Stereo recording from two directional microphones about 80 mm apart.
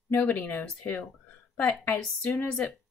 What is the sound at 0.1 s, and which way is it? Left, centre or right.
Speech, left.